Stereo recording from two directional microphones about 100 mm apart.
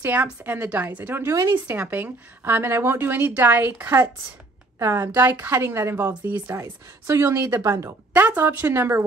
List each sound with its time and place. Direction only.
0.0 s a woman's voice: 20° right (ahead or behind)
6.6 s a woman's voice: 30° right (ahead or behind)